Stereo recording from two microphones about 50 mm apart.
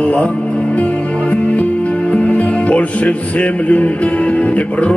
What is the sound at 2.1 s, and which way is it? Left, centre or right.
Music, left.